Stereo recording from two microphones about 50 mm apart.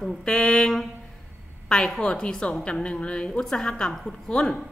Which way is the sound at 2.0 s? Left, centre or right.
Centre.